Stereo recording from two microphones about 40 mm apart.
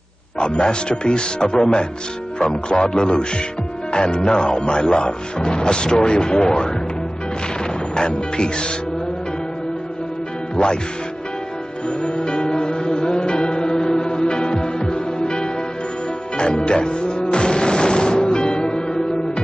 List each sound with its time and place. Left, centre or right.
0.4 s speech: left
7.9 s speech: left
10.5 s music: left
12.0 s music: left